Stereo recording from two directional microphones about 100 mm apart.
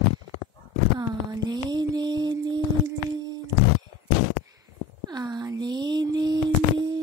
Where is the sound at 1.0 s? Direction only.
40° right (ahead or behind).